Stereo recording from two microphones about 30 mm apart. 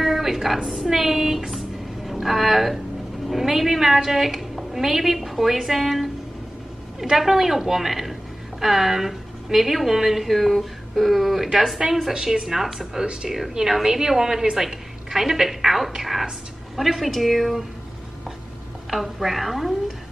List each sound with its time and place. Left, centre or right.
0.0 s a sound: centre
0.9 s a woman's voice: centre
13.0 s speech: right
13.8 s a woman's voice: centre
14.6 s a woman's voice: centre
18.9 s a woman's voice: centre